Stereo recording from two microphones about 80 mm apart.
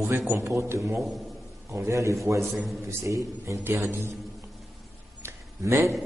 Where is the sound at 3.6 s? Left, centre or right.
Right.